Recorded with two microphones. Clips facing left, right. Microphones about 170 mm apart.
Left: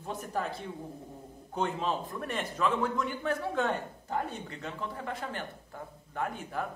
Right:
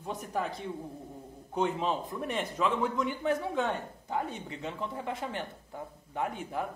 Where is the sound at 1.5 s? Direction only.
10° right (ahead or behind).